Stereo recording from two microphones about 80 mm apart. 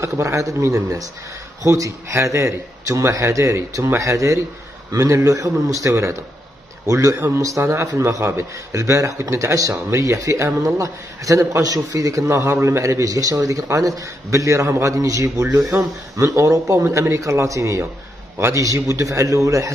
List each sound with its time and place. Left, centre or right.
0.0 s a man's voice: right